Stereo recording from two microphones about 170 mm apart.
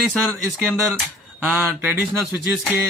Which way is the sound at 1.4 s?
10° right (ahead or behind).